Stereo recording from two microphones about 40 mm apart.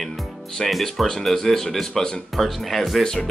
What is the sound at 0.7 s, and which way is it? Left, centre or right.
Speech, centre.